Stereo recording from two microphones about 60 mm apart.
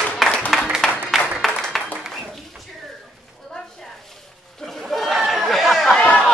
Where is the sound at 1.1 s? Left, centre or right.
Centre.